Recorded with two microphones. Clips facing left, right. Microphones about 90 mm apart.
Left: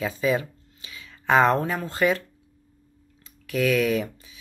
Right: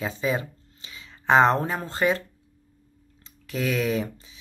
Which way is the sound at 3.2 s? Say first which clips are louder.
Left 5 dB; 30° right (ahead or behind).